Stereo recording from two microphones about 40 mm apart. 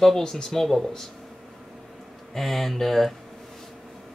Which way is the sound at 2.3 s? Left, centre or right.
Centre.